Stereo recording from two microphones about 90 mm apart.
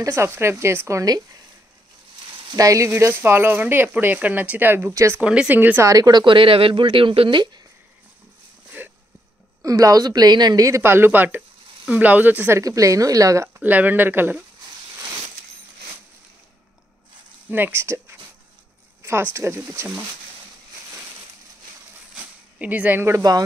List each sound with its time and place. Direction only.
0.0 s speech: 30° right (ahead or behind)
2.5 s speech: 40° right (ahead or behind)
2.9 s speech: 25° right (ahead or behind)
5.2 s speech: 10° right (ahead or behind)
5.9 s a woman's voice: 45° right (ahead or behind)
6.2 s speech: 75° right (ahead or behind)
9.6 s a woman's voice: 40° right (ahead or behind)
10.8 s speech: 25° right (ahead or behind)
12.5 s speech: 40° right (ahead or behind)
13.6 s speech: 20° right (ahead or behind)
17.5 s speech: 20° right (ahead or behind)
19.3 s speech: 30° right (ahead or behind)
22.1 s a sound: 15° right (ahead or behind)